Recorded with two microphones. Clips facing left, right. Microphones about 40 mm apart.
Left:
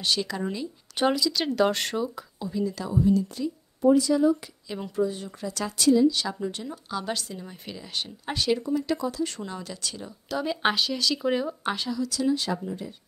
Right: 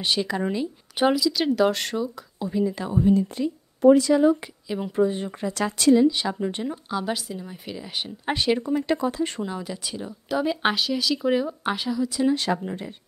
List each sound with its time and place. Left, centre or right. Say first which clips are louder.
0.0 s speech: right 3 dB; right
0.9 s speech: right 3 dB; centre
2.3 s a woman's voice: right 6 dB; centre
3.8 s speech: right 4 dB; right
4.6 s speech: right 5 dB; centre
4.9 s a woman's voice: right 4 dB; right
6.0 s speech: right 2 dB; right
6.9 s speech: even; centre
8.3 s a woman's voice: right 3 dB; right
9.4 s speech: right 4 dB; centre
12.1 s speech: right 3 dB; right
12.6 s speech: right 2 dB; right